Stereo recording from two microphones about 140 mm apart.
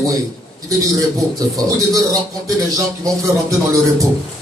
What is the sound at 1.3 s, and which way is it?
Speech, 25° right (ahead or behind).